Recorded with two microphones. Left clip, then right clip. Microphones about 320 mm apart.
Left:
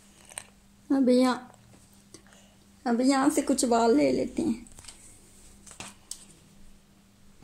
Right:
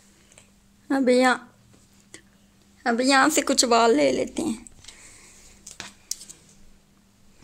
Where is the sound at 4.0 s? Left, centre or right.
Right.